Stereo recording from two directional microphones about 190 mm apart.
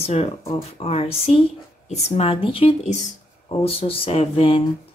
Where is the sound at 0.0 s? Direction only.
35° left (ahead or behind).